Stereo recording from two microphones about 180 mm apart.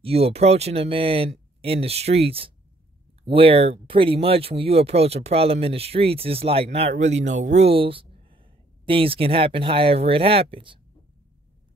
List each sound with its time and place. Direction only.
0.0 s speech: 35° right (ahead or behind)